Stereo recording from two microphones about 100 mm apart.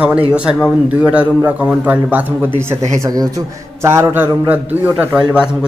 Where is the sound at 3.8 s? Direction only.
30° right (ahead or behind).